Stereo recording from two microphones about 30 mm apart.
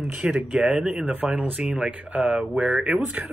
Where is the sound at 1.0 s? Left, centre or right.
Right.